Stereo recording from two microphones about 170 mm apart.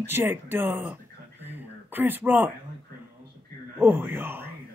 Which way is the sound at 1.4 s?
10° right (ahead or behind).